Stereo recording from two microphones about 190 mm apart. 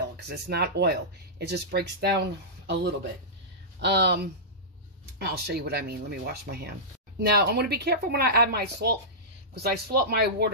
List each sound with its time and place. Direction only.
0.5 s a woman's voice: 60° right (ahead or behind)